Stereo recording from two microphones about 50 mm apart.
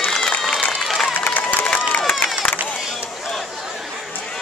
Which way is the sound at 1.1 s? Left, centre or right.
Left.